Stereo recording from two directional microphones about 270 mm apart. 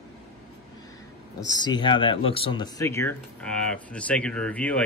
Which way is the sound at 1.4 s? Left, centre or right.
Centre.